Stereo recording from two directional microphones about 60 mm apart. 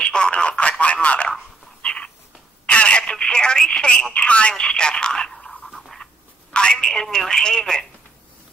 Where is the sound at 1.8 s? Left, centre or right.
Centre.